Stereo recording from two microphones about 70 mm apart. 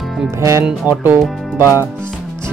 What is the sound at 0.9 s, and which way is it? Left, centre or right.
Speech, right.